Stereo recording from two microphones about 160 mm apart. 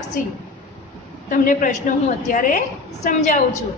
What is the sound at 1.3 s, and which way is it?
A woman's voice, 55° left (ahead or behind).